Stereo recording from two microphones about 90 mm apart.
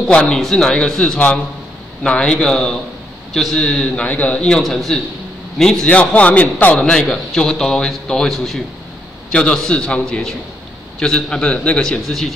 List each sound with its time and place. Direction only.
0.1 s a man's voice: 10° left (ahead or behind)